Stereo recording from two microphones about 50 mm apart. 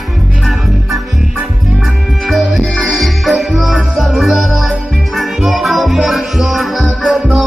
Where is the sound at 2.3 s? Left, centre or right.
Centre.